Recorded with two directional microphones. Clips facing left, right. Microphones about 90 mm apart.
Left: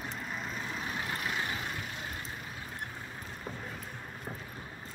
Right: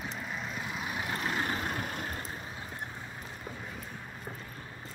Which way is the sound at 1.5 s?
45° right (ahead or behind).